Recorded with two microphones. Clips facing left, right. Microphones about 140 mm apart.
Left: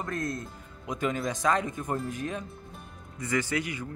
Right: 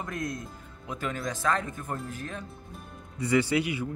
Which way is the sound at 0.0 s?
Centre (ahead or behind).